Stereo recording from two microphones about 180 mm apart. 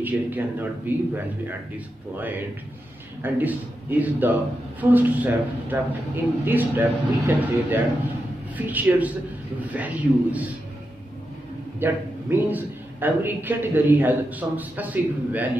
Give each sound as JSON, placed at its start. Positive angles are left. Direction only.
{"t": 0.0, "sound": "a man's voice", "side_deg": -10}
{"t": 3.2, "sound": "a man's voice", "side_deg": -10}
{"t": 11.8, "sound": "a man's voice", "side_deg": -10}